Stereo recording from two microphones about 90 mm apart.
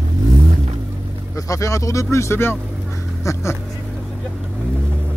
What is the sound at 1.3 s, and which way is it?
Speech, 35° left (ahead or behind).